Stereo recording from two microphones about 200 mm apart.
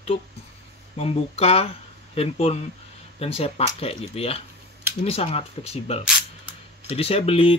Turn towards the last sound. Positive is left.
turn(degrees=25)  # may be behind; listen again after turning